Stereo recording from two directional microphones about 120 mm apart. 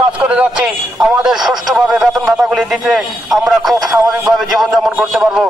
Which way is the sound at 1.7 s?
Centre (ahead or behind).